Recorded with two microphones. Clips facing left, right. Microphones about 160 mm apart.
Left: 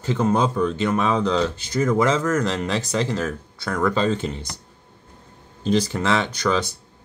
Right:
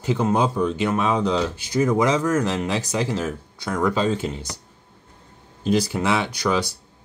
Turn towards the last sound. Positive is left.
turn(degrees=-10)  # may be behind; listen again after turning